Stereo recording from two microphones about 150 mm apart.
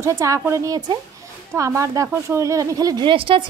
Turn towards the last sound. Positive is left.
turn(degrees=-35)  # may be behind; listen again after turning